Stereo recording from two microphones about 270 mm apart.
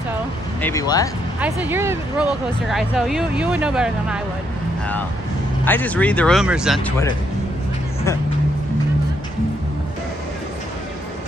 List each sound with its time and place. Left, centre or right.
0.6 s speech: centre
1.4 s speech: centre
5.7 s speech: centre